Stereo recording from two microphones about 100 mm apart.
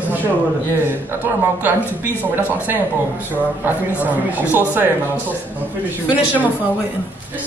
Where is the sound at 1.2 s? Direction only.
20° right (ahead or behind).